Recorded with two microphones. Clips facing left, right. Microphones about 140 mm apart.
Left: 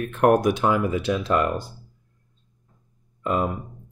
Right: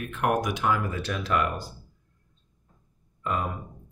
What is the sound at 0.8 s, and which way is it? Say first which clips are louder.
Speech: left 8 dB; 20° left (ahead or behind).